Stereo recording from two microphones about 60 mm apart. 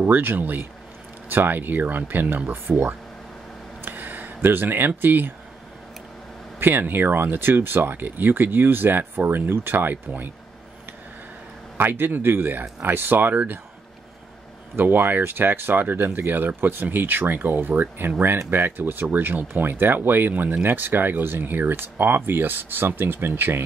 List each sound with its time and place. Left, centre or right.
0.0 s speech: right
3.8 s a sound: right
6.6 s speech: right
11.7 s speech: right
14.8 s speech: right